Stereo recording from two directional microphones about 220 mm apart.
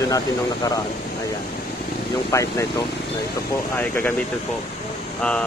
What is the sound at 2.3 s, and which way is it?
Speech, 15° left (ahead or behind).